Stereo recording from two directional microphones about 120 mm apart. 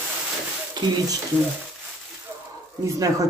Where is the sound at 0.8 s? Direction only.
35° right (ahead or behind).